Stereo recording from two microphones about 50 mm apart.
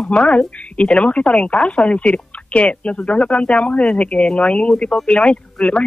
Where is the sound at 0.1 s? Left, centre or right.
Left.